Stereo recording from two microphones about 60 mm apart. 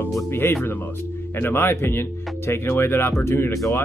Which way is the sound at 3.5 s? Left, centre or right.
Left.